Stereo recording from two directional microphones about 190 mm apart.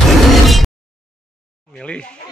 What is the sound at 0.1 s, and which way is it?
Music, centre (ahead or behind).